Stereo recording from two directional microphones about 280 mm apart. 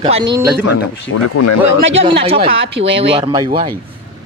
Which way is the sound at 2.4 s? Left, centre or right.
Right.